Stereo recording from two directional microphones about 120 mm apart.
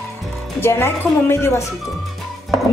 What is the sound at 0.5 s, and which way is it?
Speech, 20° left (ahead or behind).